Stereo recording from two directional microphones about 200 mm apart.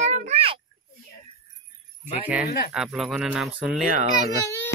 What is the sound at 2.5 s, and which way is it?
Speech, 50° left (ahead or behind).